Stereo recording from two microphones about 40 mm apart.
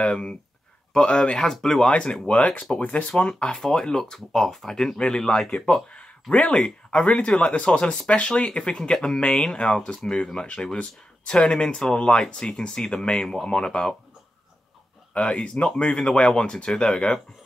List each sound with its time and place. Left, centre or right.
0.1 s speech: left
1.5 s speech: centre
1.9 s speech: left
3.3 s speech: centre
5.5 s speech: left
6.5 s speech: left
7.2 s speech: left
15.1 s speech: left